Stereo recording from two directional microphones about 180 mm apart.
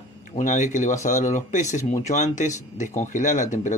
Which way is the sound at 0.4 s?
45° left (ahead or behind).